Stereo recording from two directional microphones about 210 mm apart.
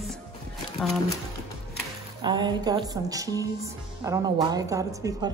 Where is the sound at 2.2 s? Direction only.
20° right (ahead or behind).